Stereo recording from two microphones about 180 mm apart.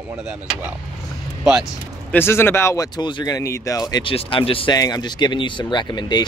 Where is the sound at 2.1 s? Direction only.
15° left (ahead or behind).